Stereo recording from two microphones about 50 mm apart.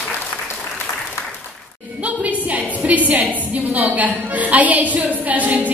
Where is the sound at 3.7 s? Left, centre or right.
Right.